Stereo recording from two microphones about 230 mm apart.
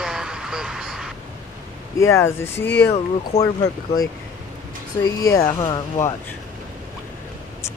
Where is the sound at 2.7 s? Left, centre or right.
Left.